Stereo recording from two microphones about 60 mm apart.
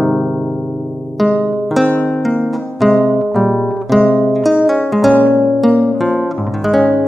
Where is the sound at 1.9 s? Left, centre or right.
Left.